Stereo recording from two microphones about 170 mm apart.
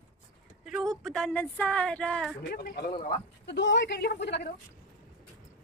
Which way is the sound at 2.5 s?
65° left (ahead or behind).